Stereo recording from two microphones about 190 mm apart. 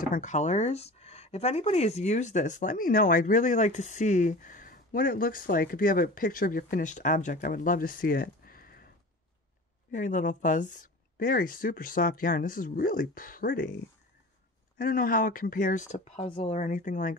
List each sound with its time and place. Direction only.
0.1 s speech: 40° left (ahead or behind)
14.8 s speech: 45° left (ahead or behind)